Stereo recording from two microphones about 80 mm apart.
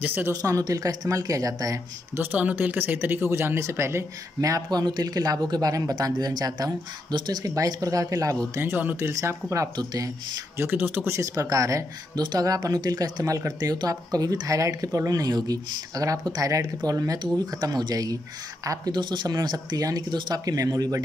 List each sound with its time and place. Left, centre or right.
0.0 s speech: right
0.3 s speech: right
2.1 s speech: right
8.5 s speech: right
9.1 s speech: right
9.8 s speech: right
10.6 s speech: right
11.1 s speech: right
12.2 s speech: right
18.9 s speech: right